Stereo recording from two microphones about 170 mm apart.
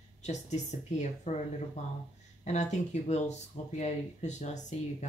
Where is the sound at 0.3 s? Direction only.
45° left (ahead or behind).